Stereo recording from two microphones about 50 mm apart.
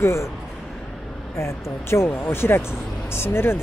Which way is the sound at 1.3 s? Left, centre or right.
Left.